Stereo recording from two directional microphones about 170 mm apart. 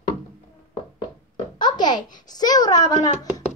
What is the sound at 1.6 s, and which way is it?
Babbling, 25° left (ahead or behind).